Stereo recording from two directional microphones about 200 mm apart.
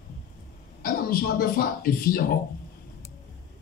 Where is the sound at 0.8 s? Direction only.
45° left (ahead or behind).